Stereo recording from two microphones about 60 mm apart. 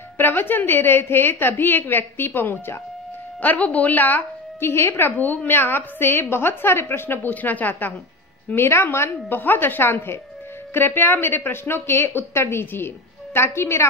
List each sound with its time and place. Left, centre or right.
0.2 s a woman's voice: left
3.3 s a woman's voice: left
4.6 s a woman's voice: left
8.5 s a woman's voice: left